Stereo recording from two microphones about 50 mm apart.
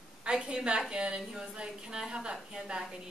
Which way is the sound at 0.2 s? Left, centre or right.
Centre.